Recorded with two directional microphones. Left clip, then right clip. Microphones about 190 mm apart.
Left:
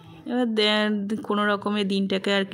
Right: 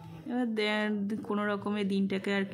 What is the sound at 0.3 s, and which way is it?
Speech, 25° left (ahead or behind).